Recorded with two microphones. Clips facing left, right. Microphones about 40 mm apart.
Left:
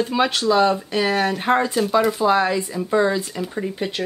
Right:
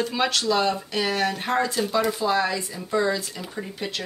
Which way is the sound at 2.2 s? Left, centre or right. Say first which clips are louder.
Left 5 dB; left.